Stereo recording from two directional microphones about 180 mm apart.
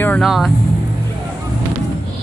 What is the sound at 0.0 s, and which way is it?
Speech, 5° left (ahead or behind).